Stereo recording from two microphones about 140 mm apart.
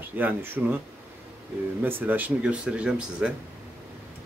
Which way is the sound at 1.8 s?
15° right (ahead or behind).